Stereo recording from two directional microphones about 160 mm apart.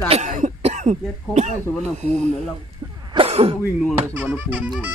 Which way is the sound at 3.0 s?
30° right (ahead or behind).